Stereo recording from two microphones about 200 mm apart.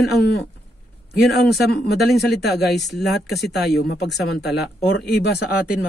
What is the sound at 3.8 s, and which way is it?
Speech, 55° left (ahead or behind).